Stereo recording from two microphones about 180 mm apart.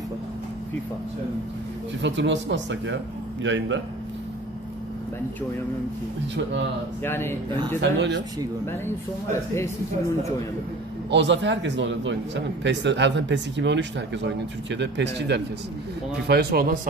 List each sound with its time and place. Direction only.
2.0 s a man's voice: 90° right
6.3 s a man's voice: 80° right
7.0 s speech: 10° left (ahead or behind)
7.8 s speech: 75° right (ahead or behind)
8.8 s speech: 15° left (ahead or behind)
11.1 s a man's voice: 75° right (ahead or behind)
16.3 s speech: 65° right (ahead or behind)